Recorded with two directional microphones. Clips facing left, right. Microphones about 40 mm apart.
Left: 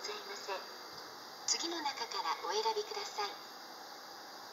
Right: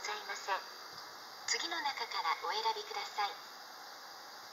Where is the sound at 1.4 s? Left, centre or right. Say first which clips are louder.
Right 1 dB; right.